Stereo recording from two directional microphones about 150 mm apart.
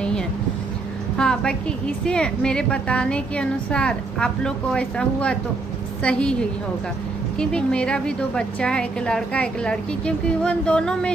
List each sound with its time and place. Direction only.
1.1 s a woman's voice: 5° left (ahead or behind)
7.3 s a woman's voice: 5° left (ahead or behind)